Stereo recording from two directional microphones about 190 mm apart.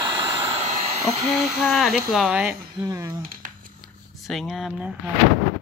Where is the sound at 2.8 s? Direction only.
15° right (ahead or behind).